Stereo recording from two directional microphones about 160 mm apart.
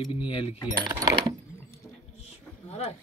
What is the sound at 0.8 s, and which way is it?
Speech, 20° right (ahead or behind).